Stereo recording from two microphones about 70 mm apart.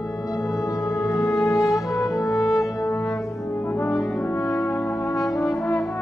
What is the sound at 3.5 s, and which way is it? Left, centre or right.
Brass instrument, left.